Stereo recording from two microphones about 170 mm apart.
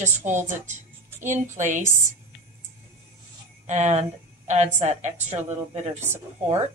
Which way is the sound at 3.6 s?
40° right (ahead or behind).